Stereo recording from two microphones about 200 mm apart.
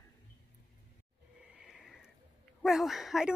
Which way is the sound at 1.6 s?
Centre (ahead or behind).